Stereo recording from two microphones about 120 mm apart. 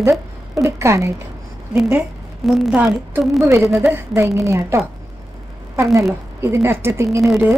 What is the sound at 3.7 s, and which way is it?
A woman's voice, 20° right (ahead or behind).